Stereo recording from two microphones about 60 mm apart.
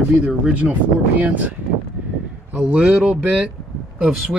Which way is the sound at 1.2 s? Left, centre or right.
Right.